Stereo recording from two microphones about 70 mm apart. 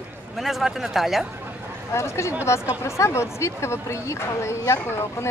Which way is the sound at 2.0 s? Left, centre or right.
Left.